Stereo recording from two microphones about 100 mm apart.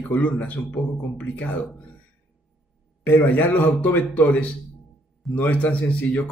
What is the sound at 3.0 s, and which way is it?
Speech, 15° left (ahead or behind).